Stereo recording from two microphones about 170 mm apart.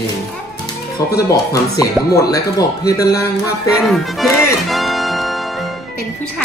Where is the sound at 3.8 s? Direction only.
Centre (ahead or behind).